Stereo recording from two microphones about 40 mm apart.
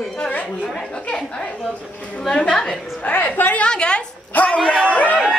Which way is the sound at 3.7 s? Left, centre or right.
Left.